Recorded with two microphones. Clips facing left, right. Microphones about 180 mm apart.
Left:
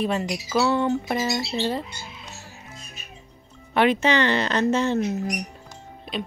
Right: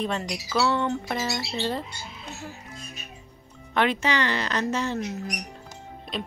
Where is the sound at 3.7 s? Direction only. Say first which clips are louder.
Left 4 dB; 15° left (ahead or behind).